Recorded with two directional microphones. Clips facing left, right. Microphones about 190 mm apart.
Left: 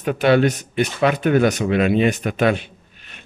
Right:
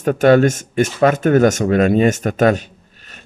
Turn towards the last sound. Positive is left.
turn(degrees=-40)  # may be behind; listen again after turning